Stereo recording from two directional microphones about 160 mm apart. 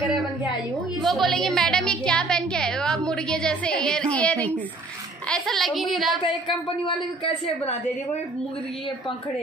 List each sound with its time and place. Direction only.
1.0 s a woman's voice: centre (ahead or behind)
6.4 s speech: 30° left (ahead or behind)